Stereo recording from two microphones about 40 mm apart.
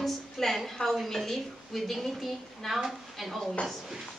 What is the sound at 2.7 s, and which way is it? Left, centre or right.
Speech, centre.